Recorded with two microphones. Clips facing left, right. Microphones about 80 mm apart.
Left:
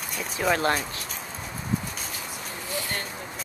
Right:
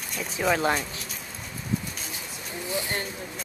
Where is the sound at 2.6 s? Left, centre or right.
Right.